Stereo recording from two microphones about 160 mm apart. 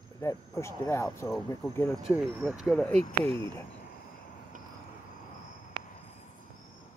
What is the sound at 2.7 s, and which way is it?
Speech, 5° left (ahead or behind).